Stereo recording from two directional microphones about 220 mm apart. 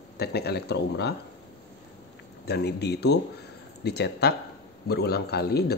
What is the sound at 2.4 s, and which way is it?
A man's voice, 50° left (ahead or behind).